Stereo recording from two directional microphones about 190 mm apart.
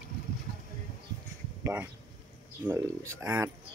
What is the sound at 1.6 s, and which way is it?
Speech, 10° right (ahead or behind).